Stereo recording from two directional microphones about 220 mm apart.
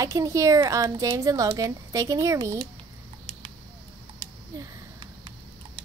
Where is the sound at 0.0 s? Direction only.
15° right (ahead or behind).